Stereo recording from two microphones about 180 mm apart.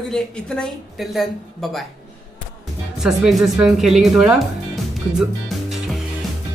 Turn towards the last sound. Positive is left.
turn(degrees=0)  # may be behind; listen again after turning